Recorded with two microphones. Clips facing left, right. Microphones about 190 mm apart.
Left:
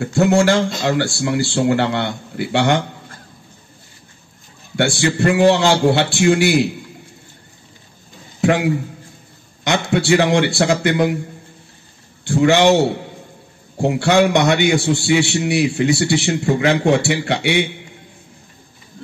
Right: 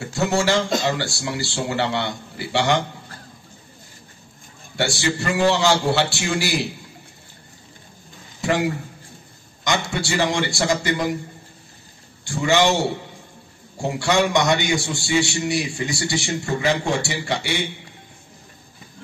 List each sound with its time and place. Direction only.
0.0 s a man's voice: 55° left (ahead or behind)
4.7 s a man's voice: 60° left (ahead or behind)
8.4 s a man's voice: 60° left (ahead or behind)
12.3 s a man's voice: 60° left (ahead or behind)